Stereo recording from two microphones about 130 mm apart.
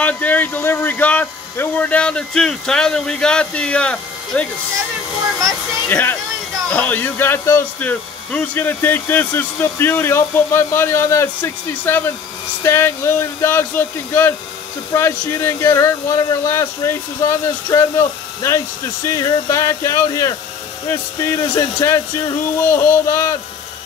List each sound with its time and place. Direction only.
0.0 s speech: 10° left (ahead or behind)
5.9 s speech: 15° left (ahead or behind)